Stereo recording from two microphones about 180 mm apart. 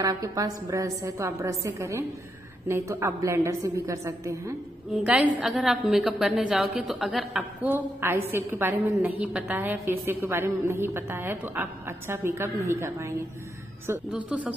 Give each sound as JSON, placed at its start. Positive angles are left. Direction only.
{"t": 0.0, "sound": "a woman's voice", "side_deg": -20}
{"t": 5.0, "sound": "a woman's voice", "side_deg": -5}